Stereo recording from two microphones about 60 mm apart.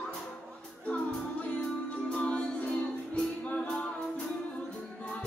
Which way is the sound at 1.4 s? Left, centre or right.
Left.